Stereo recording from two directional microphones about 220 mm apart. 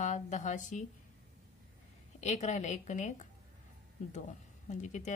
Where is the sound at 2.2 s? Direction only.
30° left (ahead or behind).